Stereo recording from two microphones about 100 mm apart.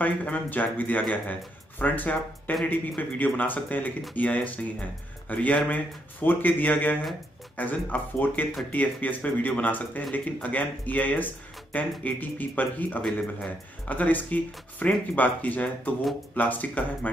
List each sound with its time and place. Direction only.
0.0 s speech: 15° left (ahead or behind)